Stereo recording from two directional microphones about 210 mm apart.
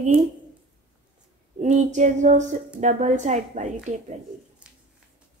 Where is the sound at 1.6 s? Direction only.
35° right (ahead or behind).